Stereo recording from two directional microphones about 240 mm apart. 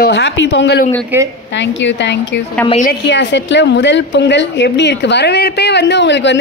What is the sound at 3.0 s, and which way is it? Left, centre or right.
A woman's voice, left.